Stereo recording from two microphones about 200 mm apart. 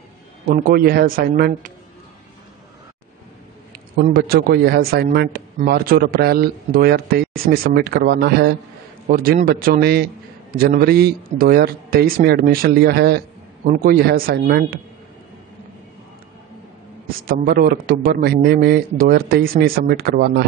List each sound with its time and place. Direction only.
0.5 s a man's voice: 45° right (ahead or behind)
3.7 s a man's voice: 50° right (ahead or behind)
17.3 s a man's voice: 45° right (ahead or behind)